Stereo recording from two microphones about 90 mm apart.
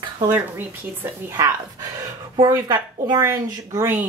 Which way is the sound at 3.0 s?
45° right (ahead or behind).